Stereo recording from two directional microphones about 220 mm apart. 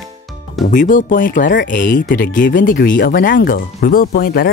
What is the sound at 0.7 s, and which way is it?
Speech, 35° left (ahead or behind).